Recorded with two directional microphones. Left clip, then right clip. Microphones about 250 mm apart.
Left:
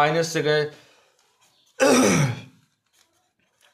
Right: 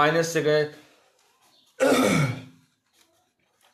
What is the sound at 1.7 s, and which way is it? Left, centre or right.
Throat clearing, left.